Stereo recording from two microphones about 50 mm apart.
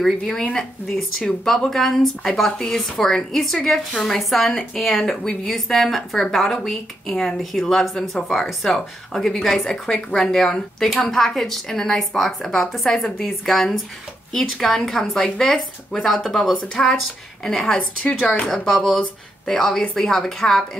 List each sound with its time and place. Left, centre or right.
0.0 s a woman's voice: centre
5.2 s a woman's voice: centre
14.9 s a woman's voice: centre
16.6 s speech: centre
19.5 s speech: centre